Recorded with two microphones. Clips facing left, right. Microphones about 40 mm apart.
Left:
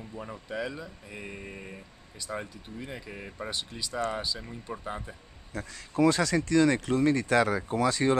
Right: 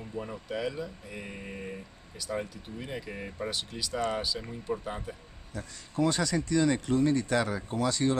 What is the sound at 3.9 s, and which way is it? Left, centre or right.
Speech, centre.